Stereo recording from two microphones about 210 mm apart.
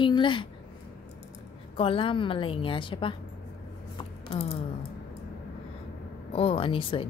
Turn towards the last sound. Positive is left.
turn(degrees=25)  # may be behind; listen again after turning